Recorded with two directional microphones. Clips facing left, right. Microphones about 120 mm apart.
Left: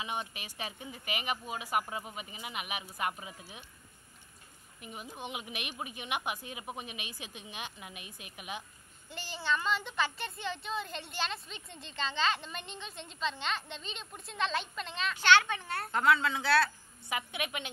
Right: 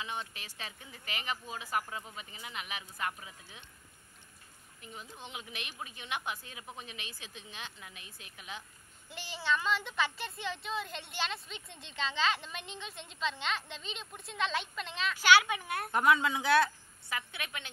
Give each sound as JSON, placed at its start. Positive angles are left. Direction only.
{"t": 0.0, "sound": "a woman's voice", "side_deg": 15}
{"t": 4.7, "sound": "a woman's voice", "side_deg": 15}
{"t": 9.1, "sound": "a woman's voice", "side_deg": 0}
{"t": 17.1, "sound": "a woman's voice", "side_deg": 15}